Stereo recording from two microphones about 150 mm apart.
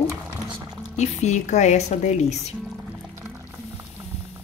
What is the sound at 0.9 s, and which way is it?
A woman's voice, 50° left (ahead or behind).